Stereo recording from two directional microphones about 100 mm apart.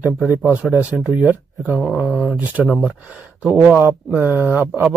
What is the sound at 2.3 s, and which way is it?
Speech, 15° right (ahead or behind).